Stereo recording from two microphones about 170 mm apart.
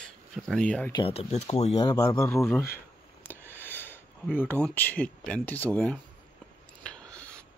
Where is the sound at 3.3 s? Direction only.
10° left (ahead or behind).